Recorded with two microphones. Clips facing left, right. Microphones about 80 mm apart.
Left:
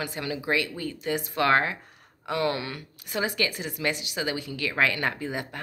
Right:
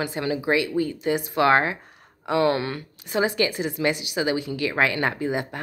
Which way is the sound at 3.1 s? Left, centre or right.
Right.